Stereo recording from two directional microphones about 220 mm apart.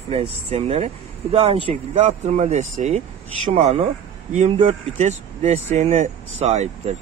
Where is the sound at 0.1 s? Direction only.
25° right (ahead or behind).